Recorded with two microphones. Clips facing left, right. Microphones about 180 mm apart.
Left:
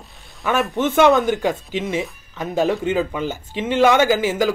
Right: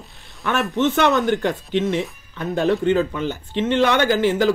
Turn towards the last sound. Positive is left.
turn(degrees=10)  # may be behind; listen again after turning